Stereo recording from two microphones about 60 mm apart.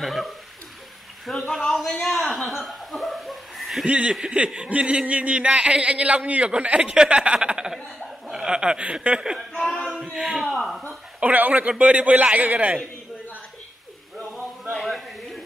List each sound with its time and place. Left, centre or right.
0.0 s chuckle: centre
1.5 s speech: centre
3.8 s laughter: right
8.3 s speech: centre
9.5 s a sound: centre
10.1 s speech: centre
11.1 s laughter: right
14.7 s a sound: centre